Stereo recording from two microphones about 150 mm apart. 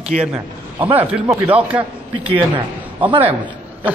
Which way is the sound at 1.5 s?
10° right (ahead or behind).